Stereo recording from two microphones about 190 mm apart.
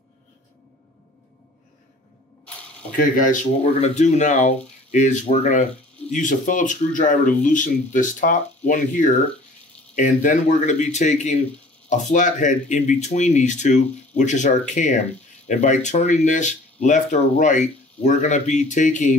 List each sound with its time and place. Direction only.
3.8 s speech: 35° left (ahead or behind)